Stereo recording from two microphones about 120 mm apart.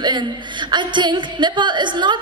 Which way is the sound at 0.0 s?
40° right (ahead or behind).